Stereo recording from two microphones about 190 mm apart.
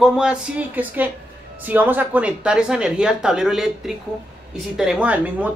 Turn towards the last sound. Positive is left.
turn(degrees=-5)  # may be behind; listen again after turning